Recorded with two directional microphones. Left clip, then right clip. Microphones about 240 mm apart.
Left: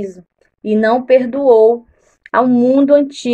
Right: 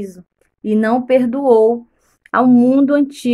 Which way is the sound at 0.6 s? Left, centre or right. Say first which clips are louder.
Left 3 dB; right.